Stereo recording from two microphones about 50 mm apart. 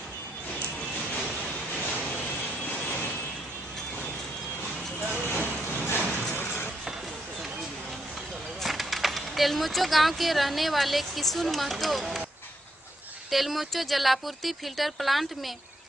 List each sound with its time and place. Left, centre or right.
5.3 s vehicle: left
6.3 s music: left
8.6 s speech: centre
13.3 s speech: centre